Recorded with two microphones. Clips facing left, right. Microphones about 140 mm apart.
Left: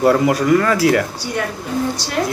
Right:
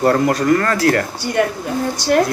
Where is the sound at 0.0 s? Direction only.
5° left (ahead or behind).